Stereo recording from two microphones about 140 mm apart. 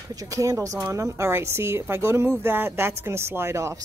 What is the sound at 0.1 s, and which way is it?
Speech, 25° right (ahead or behind).